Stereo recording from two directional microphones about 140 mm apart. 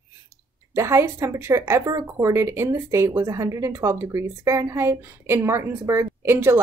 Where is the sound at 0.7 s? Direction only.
20° right (ahead or behind).